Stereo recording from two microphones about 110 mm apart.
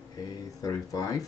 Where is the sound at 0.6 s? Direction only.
35° left (ahead or behind).